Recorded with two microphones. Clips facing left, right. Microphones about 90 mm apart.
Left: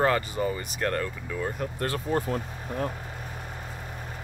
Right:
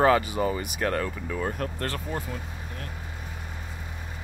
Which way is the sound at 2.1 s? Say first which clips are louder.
Left 9 dB; 35° left (ahead or behind).